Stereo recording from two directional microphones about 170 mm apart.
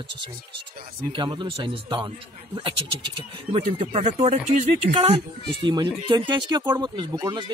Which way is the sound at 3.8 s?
40° right (ahead or behind).